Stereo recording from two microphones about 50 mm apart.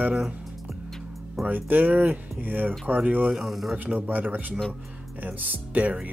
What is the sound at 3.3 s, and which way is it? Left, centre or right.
Speech, centre.